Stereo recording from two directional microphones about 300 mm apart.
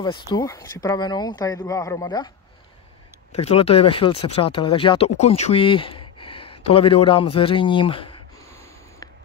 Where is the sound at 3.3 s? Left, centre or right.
Centre.